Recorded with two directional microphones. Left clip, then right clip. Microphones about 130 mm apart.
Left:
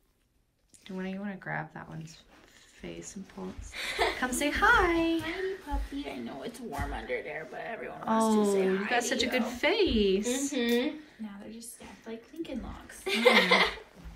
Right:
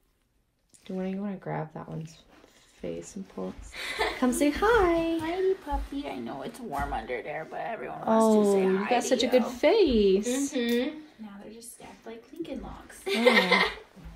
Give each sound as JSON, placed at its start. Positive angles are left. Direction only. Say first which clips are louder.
{"t": 0.8, "sound": "a woman's voice", "louder": "right 4 dB", "side_deg": -55}
{"t": 2.8, "sound": "speech", "louder": "right 7 dB", "side_deg": -55}
{"t": 3.7, "sound": "speech", "louder": "left 1 dB", "side_deg": 5}
{"t": 4.4, "sound": "speech", "louder": "even", "side_deg": -80}
{"t": 5.9, "sound": "a woman's voice", "louder": "right 3 dB", "side_deg": -45}
{"t": 10.5, "sound": "speech", "louder": "left 1 dB", "side_deg": 0}
{"t": 12.1, "sound": "a sound", "louder": "left 5 dB", "side_deg": -90}
{"t": 13.0, "sound": "speech", "louder": "right 1 dB", "side_deg": 0}